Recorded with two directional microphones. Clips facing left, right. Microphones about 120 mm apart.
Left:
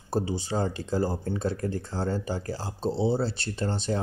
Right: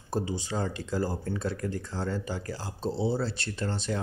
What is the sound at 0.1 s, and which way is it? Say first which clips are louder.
Speech: left 3 dB; 30° left (ahead or behind).